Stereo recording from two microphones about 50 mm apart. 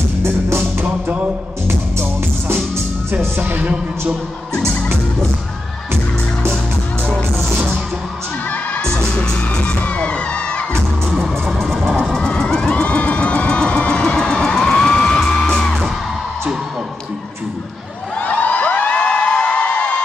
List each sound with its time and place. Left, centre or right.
0.2 s music: right
0.7 s music: right
1.7 s music: right
3.3 s music: right
8.8 s music: centre
11.1 s music: centre
12.0 s a sound: centre
15.4 s music: centre
18.2 s a sound: left